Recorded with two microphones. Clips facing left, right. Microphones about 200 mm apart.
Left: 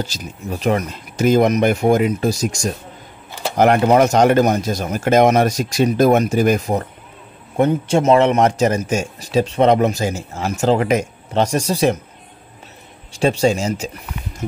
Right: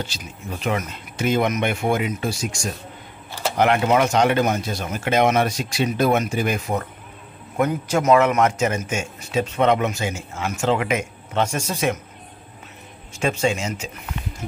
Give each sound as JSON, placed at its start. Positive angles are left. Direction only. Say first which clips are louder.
{"t": 0.0, "sound": "a man's voice", "louder": "left 5 dB", "side_deg": 40}
{"t": 13.1, "sound": "a man's voice", "louder": "left 6 dB", "side_deg": 35}